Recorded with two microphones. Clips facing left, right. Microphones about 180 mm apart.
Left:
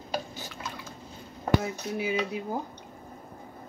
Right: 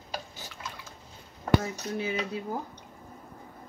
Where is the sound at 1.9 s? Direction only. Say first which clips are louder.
Left 2 dB; 10° left (ahead or behind).